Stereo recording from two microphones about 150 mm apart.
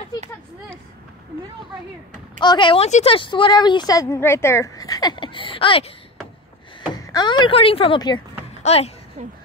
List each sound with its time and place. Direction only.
2.4 s a woman's voice: 30° left (ahead or behind)
6.9 s speech: 25° left (ahead or behind)
8.6 s speech: 45° left (ahead or behind)
9.2 s speech: 55° right (ahead or behind)